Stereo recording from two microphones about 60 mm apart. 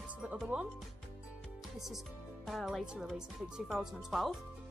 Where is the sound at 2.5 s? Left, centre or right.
Centre.